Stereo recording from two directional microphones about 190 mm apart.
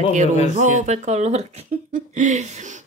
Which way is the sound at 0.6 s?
40° right (ahead or behind).